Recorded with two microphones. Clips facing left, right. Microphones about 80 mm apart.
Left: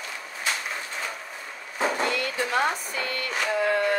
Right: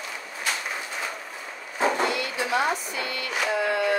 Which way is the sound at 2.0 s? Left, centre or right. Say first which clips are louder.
Even; left.